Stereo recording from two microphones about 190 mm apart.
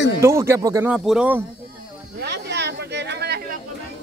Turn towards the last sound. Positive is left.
turn(degrees=-60)  # may be behind; listen again after turning